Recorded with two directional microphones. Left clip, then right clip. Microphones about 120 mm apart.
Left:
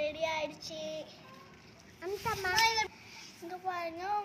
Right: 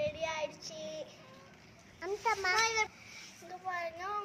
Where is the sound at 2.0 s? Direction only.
45° right (ahead or behind).